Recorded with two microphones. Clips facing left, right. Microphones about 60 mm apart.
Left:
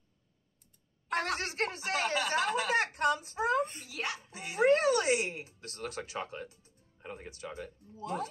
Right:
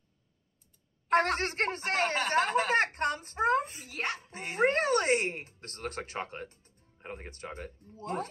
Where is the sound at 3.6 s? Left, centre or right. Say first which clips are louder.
Left 2 dB; centre.